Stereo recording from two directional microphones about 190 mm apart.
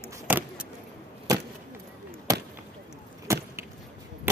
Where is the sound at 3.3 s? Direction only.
15° right (ahead or behind).